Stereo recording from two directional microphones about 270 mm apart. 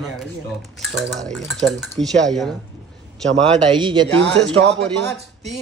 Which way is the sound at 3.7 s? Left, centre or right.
Centre.